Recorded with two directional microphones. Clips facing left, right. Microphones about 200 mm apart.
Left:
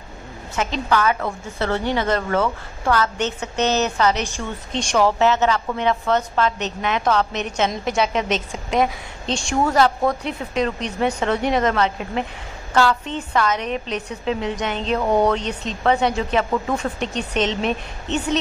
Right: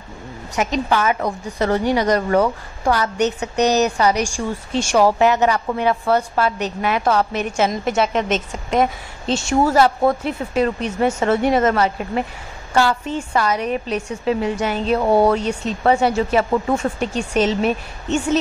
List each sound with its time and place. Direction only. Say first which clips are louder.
0.6 s a woman's voice: right 2 dB; 20° right (ahead or behind)